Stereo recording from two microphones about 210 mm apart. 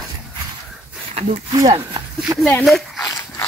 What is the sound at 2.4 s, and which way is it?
Speech, centre (ahead or behind).